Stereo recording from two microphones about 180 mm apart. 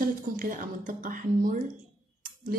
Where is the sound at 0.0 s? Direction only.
50° right (ahead or behind).